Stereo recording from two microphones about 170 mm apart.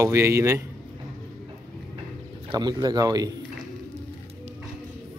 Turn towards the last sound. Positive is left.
turn(degrees=-20)  # may be behind; listen again after turning